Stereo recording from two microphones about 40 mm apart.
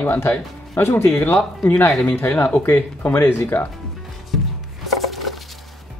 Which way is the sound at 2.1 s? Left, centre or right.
Left.